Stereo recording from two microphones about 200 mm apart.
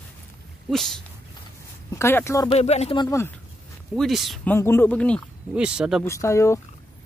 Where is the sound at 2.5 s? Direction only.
35° left (ahead or behind).